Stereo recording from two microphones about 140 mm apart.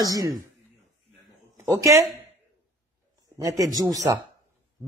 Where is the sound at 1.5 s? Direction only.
20° right (ahead or behind).